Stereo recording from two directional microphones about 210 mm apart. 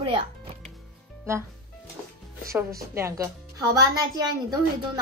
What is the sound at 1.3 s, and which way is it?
Speech, 10° right (ahead or behind).